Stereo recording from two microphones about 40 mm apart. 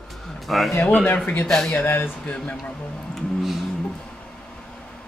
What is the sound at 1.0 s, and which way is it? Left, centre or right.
Speech, left.